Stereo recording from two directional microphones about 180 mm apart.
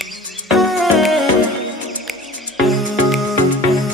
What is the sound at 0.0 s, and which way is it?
Music, centre (ahead or behind).